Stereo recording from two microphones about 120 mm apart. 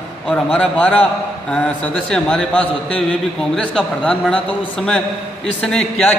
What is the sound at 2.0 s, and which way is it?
A man's voice, 5° left (ahead or behind).